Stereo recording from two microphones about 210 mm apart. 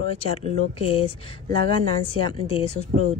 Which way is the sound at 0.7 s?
25° left (ahead or behind).